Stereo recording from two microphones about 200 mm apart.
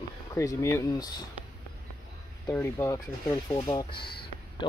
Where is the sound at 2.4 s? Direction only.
10° left (ahead or behind).